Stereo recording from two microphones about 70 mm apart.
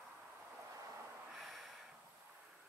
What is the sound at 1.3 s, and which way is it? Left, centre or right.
Snort, centre.